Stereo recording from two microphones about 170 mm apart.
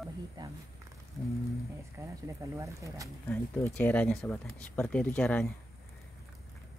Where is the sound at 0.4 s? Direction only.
25° right (ahead or behind).